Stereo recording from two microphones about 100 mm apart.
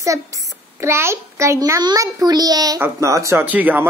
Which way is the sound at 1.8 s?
45° right (ahead or behind).